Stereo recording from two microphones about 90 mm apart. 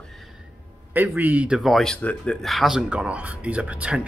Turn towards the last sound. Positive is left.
turn(degrees=-15)  # may be behind; listen again after turning